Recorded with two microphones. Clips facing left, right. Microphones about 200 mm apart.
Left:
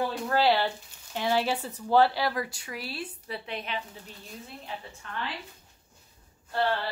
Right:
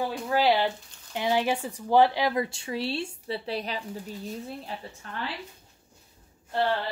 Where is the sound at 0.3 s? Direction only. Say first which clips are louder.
Right 2 dB; 15° right (ahead or behind); by 3.8 s 35° right (ahead or behind).